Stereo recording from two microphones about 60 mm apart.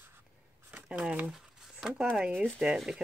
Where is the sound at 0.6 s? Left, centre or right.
Right.